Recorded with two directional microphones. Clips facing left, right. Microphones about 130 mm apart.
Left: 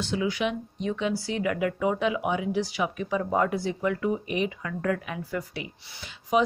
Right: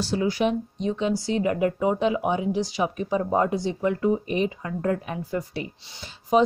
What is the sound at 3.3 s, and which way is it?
A woman's voice, 25° right (ahead or behind).